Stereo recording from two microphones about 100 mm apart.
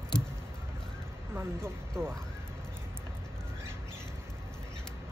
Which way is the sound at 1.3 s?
25° right (ahead or behind).